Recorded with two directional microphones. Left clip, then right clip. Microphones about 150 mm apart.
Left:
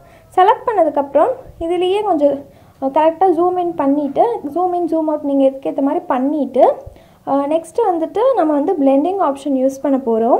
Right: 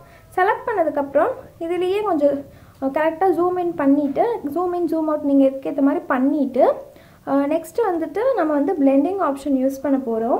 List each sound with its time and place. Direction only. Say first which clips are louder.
0.3 s a woman's voice: left 7 dB; 25° left (ahead or behind)